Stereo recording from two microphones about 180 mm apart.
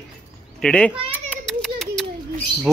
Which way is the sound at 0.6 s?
5° left (ahead or behind).